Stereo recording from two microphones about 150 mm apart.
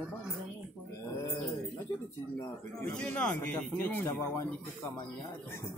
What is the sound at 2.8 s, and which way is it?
A man's voice, 10° left (ahead or behind).